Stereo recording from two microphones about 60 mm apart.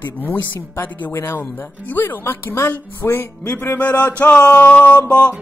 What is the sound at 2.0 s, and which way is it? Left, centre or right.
Speech, left.